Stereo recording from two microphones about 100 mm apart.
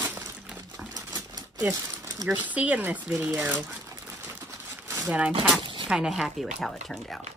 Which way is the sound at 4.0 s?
20° right (ahead or behind).